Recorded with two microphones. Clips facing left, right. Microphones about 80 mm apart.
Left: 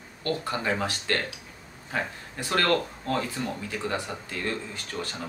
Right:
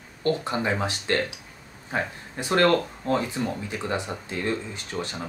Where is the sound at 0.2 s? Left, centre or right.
Right.